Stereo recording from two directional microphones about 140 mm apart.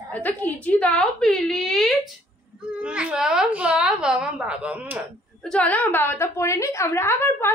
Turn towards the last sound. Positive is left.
turn(degrees=15)  # may be behind; listen again after turning